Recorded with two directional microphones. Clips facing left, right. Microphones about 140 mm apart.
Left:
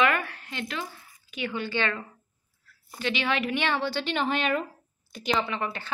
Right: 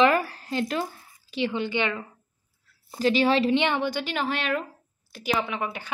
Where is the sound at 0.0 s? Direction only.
35° right (ahead or behind); by 2.0 s 15° right (ahead or behind).